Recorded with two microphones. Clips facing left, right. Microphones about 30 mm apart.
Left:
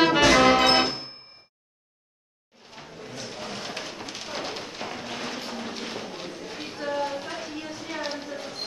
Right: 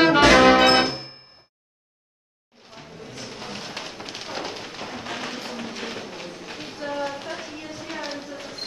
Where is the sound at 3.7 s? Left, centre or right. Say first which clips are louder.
Right 1 dB; right.